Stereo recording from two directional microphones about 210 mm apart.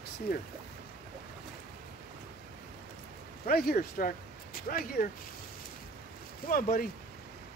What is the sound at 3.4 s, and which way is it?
Speech, 45° left (ahead or behind).